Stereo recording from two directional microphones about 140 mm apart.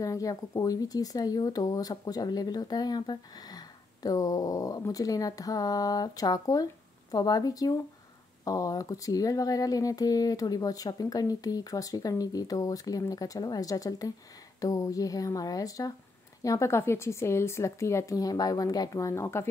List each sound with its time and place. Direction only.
0.0 s speech: 25° left (ahead or behind)